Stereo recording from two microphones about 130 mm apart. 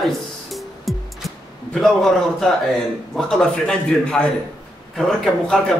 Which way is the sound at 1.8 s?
Centre (ahead or behind).